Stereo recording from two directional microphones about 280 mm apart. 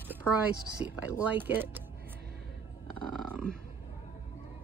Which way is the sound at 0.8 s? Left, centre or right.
Centre.